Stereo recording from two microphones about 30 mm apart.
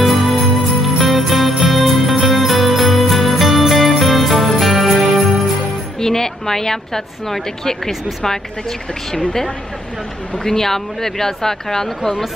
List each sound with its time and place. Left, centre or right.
0.0 s jingle bell: centre
5.9 s a woman's voice: centre
10.4 s speech: centre